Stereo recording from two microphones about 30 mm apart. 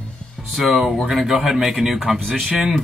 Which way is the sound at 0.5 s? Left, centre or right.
Centre.